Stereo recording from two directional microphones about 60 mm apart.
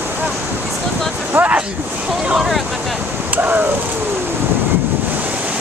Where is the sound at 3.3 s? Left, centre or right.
Right.